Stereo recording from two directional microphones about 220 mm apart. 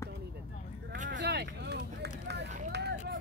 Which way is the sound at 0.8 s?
40° right (ahead or behind).